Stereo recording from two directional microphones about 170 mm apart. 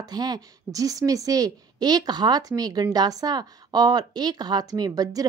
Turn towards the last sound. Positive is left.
turn(degrees=-20)  # may be behind; listen again after turning